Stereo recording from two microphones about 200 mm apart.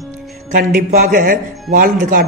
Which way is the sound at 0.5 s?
40° right (ahead or behind).